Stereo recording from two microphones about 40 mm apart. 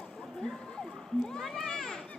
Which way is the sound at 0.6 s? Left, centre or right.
Centre.